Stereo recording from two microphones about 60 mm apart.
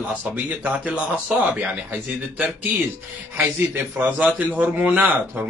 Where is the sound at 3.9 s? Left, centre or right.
Right.